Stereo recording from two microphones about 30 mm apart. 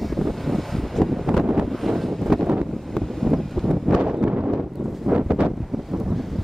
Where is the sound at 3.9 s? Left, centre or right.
Right.